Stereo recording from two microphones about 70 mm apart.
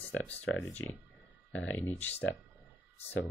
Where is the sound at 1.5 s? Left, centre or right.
Left.